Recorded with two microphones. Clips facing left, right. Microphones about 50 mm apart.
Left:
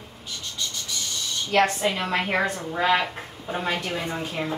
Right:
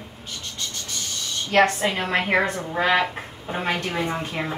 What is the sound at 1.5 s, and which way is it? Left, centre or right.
Speech, right.